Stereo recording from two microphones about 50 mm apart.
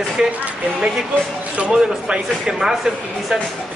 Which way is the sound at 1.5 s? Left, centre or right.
Right.